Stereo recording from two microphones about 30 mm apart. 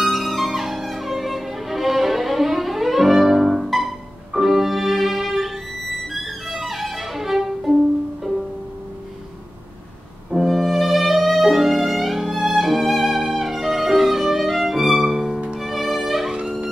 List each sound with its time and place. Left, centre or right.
0.0 s music: centre
6.1 s violin: centre
10.3 s music: left
10.7 s violin: centre
15.6 s music: centre